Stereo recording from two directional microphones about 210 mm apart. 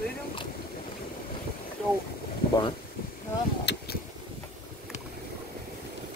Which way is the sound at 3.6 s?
50° left (ahead or behind).